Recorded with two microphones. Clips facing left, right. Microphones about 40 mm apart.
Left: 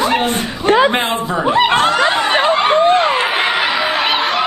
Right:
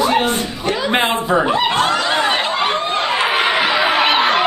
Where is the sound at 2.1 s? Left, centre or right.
Centre.